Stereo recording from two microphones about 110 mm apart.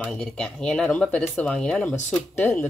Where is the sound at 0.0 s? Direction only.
5° left (ahead or behind).